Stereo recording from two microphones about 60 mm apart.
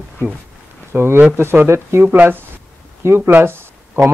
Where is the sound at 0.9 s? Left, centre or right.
Right.